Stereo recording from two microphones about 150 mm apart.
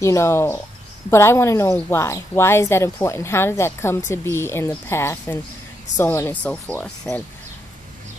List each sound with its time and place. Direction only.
0.0 s speech: 20° left (ahead or behind)